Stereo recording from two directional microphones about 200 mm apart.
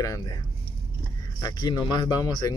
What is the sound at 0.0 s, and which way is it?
Speech, 20° left (ahead or behind).